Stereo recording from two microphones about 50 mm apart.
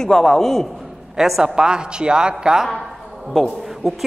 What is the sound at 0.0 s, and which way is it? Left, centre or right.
Speech, centre.